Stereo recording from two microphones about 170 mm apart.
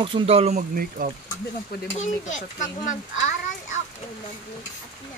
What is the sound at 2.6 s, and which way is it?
Speech, 50° left (ahead or behind).